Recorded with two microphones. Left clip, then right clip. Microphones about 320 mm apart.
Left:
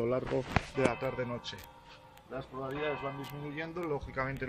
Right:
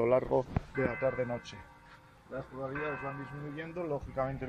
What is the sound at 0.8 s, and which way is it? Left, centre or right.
Speech, centre.